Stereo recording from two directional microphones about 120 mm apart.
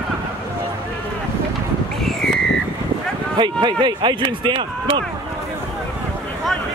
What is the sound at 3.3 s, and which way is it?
Speech, 40° right (ahead or behind).